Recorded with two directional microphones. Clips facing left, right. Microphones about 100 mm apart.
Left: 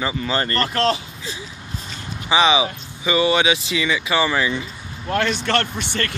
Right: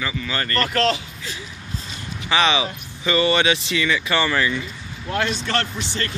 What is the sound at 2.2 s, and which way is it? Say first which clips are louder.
Speech: left 3 dB; 15° left (ahead or behind).